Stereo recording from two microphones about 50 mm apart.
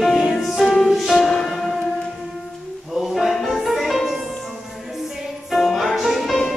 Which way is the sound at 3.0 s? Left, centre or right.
Centre.